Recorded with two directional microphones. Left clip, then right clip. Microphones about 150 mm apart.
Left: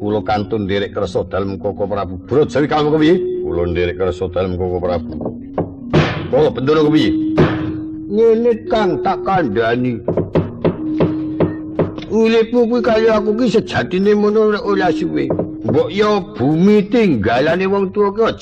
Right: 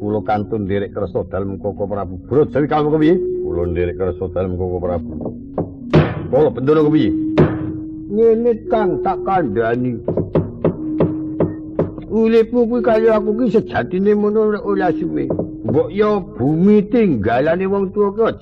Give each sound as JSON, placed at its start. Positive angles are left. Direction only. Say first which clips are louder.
{"t": 0.0, "sound": "a man's voice", "louder": "left 1 dB", "side_deg": -40}
{"t": 5.6, "sound": "knock", "louder": "even", "side_deg": -40}
{"t": 8.2, "sound": "a man's voice", "louder": "left 1 dB", "side_deg": -40}